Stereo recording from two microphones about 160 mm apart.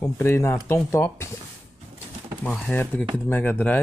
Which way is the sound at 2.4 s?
10° left (ahead or behind).